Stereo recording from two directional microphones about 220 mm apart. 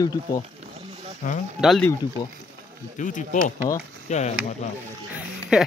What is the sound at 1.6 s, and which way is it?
Speech, centre (ahead or behind).